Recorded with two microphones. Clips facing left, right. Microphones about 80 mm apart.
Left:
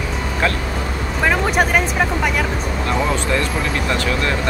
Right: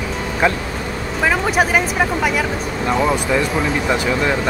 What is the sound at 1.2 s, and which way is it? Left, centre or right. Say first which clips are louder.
Speech: even; centre.